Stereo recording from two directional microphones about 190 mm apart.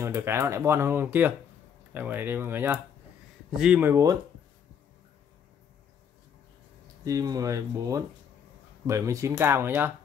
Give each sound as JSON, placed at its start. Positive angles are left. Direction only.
{"t": 0.0, "sound": "speech", "side_deg": -15}
{"t": 7.1, "sound": "speech", "side_deg": -20}